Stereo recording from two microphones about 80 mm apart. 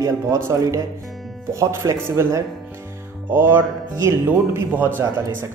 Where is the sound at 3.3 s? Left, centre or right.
Right.